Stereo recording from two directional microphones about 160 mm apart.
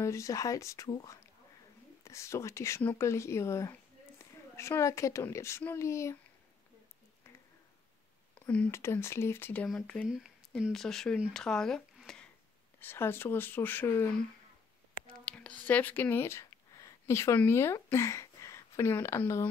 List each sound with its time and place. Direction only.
0.0 s speech: 20° left (ahead or behind)
8.4 s speech: 10° left (ahead or behind)
12.8 s speech: 15° left (ahead or behind)
15.2 s speech: 5° left (ahead or behind)